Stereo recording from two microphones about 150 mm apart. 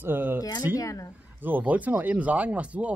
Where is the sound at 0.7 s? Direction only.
20° left (ahead or behind).